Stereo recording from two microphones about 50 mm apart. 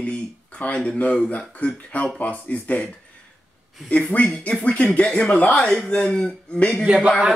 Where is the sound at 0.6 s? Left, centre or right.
Left.